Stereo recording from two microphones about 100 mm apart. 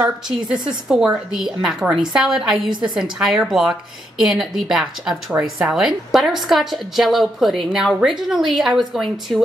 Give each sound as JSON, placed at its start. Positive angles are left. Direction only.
{"t": 0.5, "sound": "a woman's voice", "side_deg": -5}